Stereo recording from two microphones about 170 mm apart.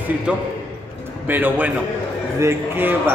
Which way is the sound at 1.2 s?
10° right (ahead or behind).